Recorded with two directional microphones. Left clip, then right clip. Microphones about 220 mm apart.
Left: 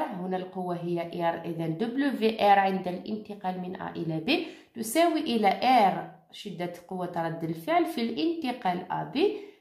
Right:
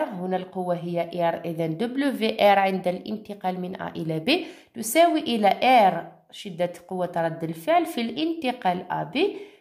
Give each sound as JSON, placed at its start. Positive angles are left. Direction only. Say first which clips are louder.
{"t": 0.3, "sound": "speech", "louder": "right 6 dB", "side_deg": -40}